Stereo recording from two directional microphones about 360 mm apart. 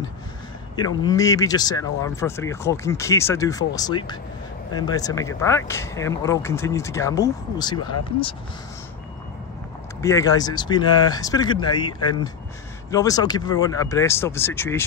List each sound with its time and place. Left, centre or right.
0.7 s speech: centre
10.0 s speech: centre